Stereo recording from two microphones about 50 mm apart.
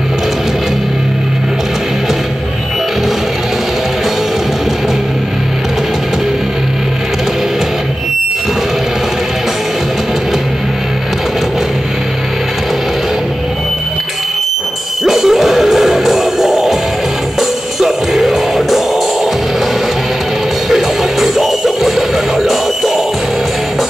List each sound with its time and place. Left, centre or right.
15.0 s music: centre
20.7 s music: centre